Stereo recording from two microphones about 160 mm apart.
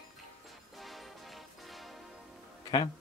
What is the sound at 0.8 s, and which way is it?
Music, centre (ahead or behind).